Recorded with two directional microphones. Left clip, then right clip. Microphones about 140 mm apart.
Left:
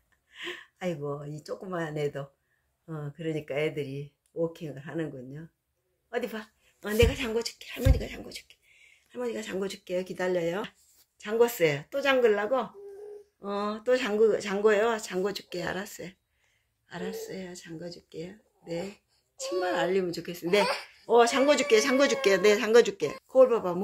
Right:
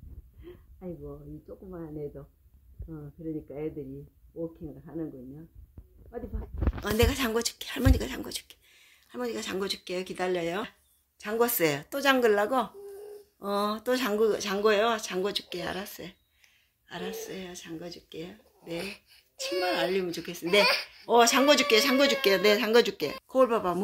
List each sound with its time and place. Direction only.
1.7 s speech: 5° left (ahead or behind)
6.8 s speech: 45° right (ahead or behind); by 9.9 s 25° right (ahead or behind)
9.9 s speech: 15° right (ahead or behind)
11.4 s speech: 35° right (ahead or behind)